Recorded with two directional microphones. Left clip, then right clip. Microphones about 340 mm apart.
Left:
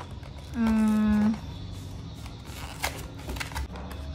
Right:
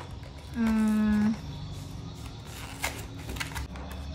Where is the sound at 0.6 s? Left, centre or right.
Centre.